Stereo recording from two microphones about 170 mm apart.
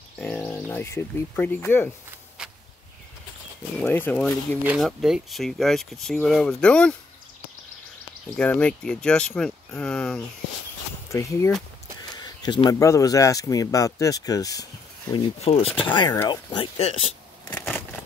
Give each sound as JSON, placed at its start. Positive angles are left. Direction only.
{"t": 0.2, "sound": "speech", "side_deg": 10}
{"t": 2.4, "sound": "a sound", "side_deg": -5}
{"t": 3.7, "sound": "speech", "side_deg": 10}
{"t": 4.6, "sound": "speech", "side_deg": 0}
{"t": 8.4, "sound": "speech", "side_deg": 5}
{"t": 11.1, "sound": "speech", "side_deg": 15}
{"t": 15.4, "sound": "speech", "side_deg": 35}
{"t": 15.8, "sound": "speech", "side_deg": 25}